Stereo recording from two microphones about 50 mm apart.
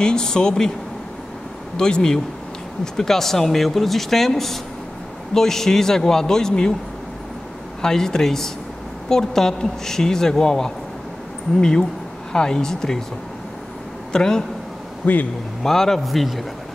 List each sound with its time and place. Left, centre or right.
0.0 s a woman's voice: centre
1.8 s a woman's voice: centre
7.8 s a woman's voice: centre
12.3 s a woman's voice: centre
14.1 s a woman's voice: centre
15.0 s speech: left
15.6 s speech: centre